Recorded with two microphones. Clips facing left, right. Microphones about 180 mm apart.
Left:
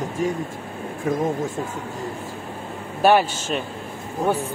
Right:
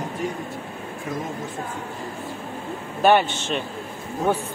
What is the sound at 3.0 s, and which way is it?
Speech, 5° left (ahead or behind).